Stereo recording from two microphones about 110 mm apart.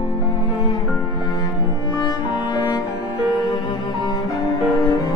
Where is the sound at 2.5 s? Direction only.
40° left (ahead or behind).